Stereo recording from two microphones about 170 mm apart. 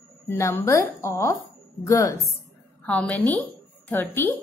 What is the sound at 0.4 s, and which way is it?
A woman's voice, 15° left (ahead or behind).